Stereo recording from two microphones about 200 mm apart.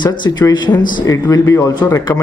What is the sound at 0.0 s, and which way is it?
Speech, 20° left (ahead or behind).